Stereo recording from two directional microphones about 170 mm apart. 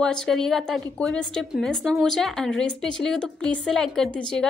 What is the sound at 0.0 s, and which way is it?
A woman's voice, 5° left (ahead or behind).